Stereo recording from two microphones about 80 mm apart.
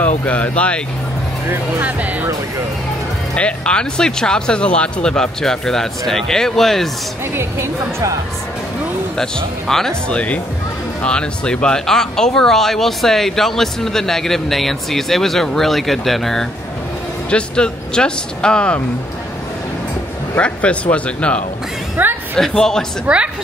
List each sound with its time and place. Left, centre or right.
0.0 s speech: centre
1.5 s speech: centre
3.3 s speech: centre
7.3 s speech: right
9.1 s speech: centre
20.3 s speech: centre
22.0 s speech: right
22.4 s speech: centre
23.0 s a woman's voice: centre